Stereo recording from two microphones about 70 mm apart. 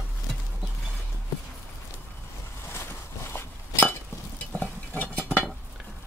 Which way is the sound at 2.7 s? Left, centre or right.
Left.